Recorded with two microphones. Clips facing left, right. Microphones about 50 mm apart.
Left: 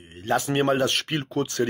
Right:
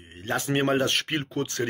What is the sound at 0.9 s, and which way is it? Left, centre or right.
Speech, right.